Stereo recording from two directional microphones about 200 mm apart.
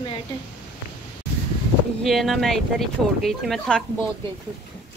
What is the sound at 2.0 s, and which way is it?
Speech, centre (ahead or behind).